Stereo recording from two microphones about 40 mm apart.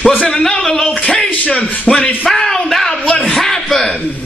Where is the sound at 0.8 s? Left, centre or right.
Left.